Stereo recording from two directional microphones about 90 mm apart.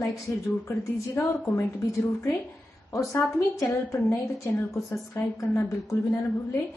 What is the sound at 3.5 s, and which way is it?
A woman's voice, 35° left (ahead or behind).